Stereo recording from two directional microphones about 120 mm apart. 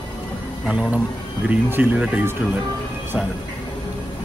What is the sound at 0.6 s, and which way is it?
Speech, 5° right (ahead or behind).